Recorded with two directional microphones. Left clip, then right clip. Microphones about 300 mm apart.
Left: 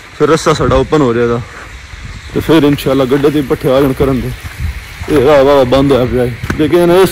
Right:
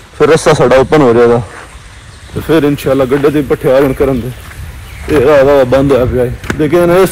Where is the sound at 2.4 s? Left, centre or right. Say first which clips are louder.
Even; centre.